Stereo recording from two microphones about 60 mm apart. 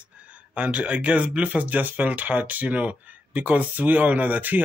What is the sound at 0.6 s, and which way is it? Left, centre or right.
Speech, right.